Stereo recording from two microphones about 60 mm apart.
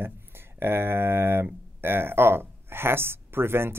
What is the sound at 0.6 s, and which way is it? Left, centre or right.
Speech, right.